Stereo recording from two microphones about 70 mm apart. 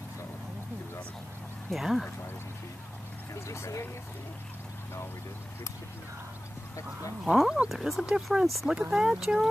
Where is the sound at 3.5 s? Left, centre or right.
Left.